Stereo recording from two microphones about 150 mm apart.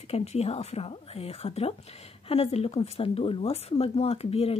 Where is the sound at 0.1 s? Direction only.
45° left (ahead or behind).